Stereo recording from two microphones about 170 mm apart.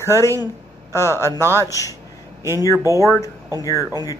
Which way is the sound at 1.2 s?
15° right (ahead or behind).